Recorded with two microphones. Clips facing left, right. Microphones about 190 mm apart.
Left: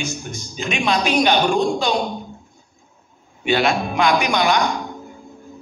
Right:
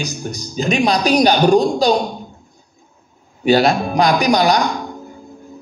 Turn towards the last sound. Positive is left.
turn(degrees=-40)  # may be behind; listen again after turning